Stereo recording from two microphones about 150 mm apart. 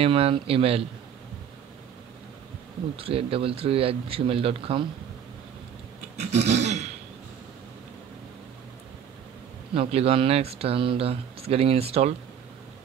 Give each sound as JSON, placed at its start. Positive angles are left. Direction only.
{"t": 0.0, "sound": "speech", "side_deg": -40}
{"t": 3.0, "sound": "speech", "side_deg": -40}
{"t": 6.1, "sound": "a sound", "side_deg": -45}
{"t": 9.8, "sound": "speech", "side_deg": -40}